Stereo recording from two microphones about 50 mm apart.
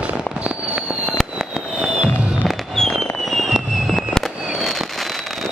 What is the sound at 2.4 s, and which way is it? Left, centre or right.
Fireworks, centre.